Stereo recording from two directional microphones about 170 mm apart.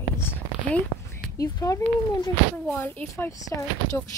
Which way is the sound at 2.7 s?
10° left (ahead or behind).